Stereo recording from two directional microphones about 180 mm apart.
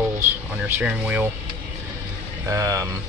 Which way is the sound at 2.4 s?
20° right (ahead or behind).